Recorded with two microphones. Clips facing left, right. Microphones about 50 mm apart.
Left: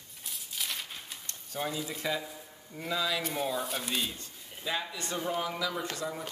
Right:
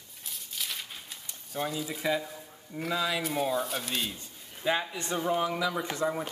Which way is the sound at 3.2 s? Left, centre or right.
Centre.